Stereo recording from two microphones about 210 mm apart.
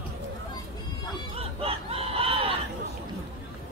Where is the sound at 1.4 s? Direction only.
30° right (ahead or behind).